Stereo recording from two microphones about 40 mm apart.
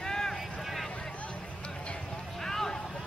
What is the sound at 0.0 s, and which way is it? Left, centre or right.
Vehicle, centre.